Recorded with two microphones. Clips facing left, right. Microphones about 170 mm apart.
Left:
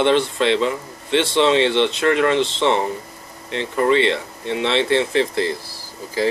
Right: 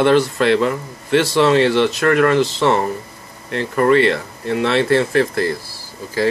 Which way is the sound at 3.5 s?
55° right (ahead or behind).